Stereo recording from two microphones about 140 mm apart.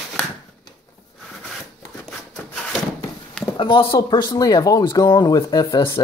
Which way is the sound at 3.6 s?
35° left (ahead or behind).